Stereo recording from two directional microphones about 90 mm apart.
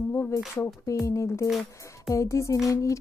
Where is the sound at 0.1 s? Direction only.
25° left (ahead or behind).